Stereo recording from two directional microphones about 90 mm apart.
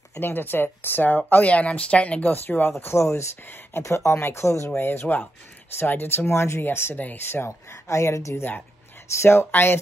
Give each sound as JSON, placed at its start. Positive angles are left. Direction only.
{"t": 0.2, "sound": "speech", "side_deg": 20}